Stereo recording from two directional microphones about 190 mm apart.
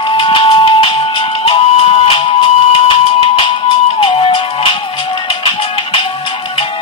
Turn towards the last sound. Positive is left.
turn(degrees=25)  # may be behind; listen again after turning